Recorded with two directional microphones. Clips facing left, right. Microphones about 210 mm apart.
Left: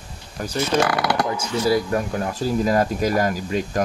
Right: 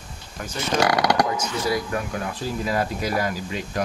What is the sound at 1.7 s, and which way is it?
Speech, 35° left (ahead or behind).